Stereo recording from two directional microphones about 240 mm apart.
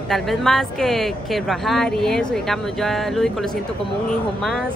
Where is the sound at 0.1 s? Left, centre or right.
Centre.